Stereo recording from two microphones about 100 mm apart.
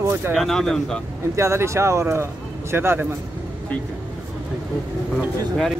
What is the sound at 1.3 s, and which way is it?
Speech, 30° right (ahead or behind).